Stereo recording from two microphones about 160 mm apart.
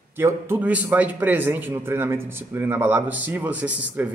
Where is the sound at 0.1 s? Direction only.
15° right (ahead or behind).